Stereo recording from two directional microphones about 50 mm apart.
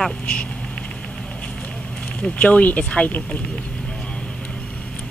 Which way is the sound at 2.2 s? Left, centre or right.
Left.